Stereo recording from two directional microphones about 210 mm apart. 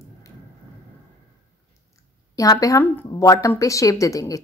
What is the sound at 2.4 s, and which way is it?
Speech, 15° left (ahead or behind).